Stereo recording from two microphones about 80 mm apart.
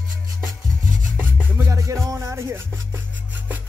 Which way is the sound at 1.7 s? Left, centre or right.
Right.